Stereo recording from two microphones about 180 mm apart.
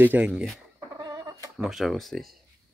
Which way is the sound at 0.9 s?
25° right (ahead or behind).